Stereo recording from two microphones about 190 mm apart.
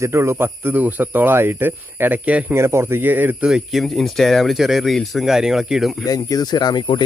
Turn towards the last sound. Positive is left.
turn(degrees=20)  # may be behind; listen again after turning